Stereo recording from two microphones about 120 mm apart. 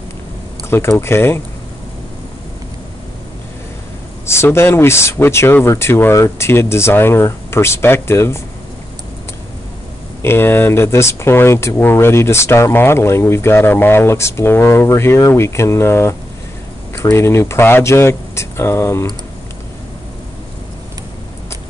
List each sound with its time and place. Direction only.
0.7 s speech: 20° left (ahead or behind)
4.3 s speech: 20° left (ahead or behind)
10.2 s speech: 20° left (ahead or behind)